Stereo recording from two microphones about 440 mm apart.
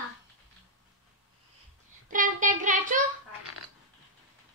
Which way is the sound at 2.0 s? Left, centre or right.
Centre.